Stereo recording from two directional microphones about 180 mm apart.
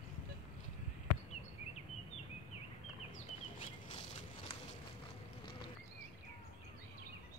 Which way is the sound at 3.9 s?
30° left (ahead or behind).